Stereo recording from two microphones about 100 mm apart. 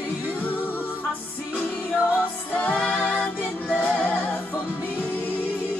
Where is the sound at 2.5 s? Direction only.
15° left (ahead or behind).